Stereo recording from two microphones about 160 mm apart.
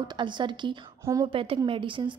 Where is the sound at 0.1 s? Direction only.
30° right (ahead or behind).